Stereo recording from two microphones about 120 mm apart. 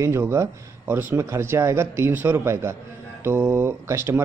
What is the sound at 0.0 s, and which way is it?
Speech, 20° right (ahead or behind).